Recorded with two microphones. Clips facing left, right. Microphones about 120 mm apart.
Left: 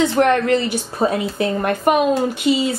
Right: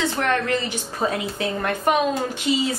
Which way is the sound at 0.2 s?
45° left (ahead or behind).